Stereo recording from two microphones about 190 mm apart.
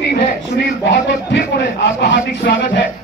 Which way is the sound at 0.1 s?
65° left (ahead or behind).